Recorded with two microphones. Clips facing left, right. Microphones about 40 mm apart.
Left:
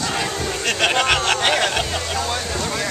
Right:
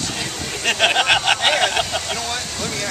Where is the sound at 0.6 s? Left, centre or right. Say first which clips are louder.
Right 2 dB; centre.